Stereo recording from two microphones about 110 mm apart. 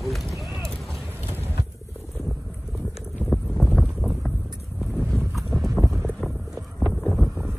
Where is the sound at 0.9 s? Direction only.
20° right (ahead or behind).